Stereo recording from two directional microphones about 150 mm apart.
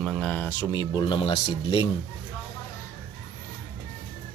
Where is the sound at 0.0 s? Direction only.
5° left (ahead or behind).